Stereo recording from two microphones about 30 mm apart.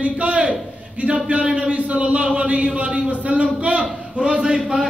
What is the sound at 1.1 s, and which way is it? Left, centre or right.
A man's voice, right.